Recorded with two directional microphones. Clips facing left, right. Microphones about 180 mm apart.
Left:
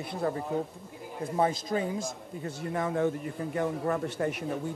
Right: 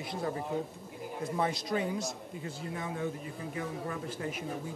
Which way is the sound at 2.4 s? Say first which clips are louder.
Left 7 dB; 85° left.